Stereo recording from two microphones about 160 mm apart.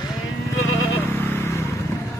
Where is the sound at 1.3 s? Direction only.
15° left (ahead or behind).